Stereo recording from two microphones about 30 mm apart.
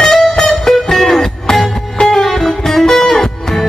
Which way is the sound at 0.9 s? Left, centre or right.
Centre.